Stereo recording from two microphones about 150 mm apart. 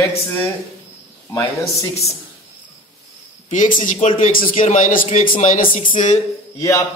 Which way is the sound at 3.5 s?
60° left (ahead or behind).